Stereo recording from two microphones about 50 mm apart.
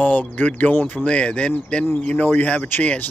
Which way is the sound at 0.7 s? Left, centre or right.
Left.